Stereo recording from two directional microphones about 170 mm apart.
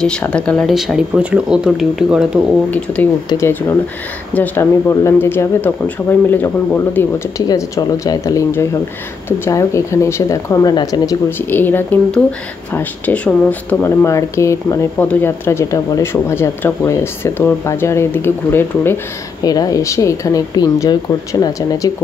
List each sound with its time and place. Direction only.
0.0 s speech: 5° left (ahead or behind)
2.7 s speech: 10° left (ahead or behind)